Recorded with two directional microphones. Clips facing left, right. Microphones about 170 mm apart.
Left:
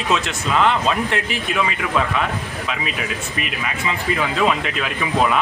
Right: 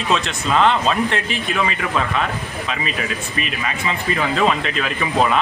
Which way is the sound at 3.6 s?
5° left (ahead or behind).